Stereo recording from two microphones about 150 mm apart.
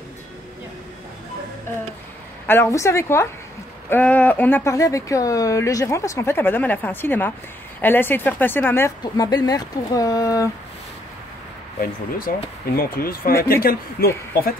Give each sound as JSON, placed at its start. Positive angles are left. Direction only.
{"t": 2.4, "sound": "speech", "side_deg": 15}
{"t": 9.0, "sound": "speech", "side_deg": 25}
{"t": 12.3, "sound": "speech", "side_deg": 75}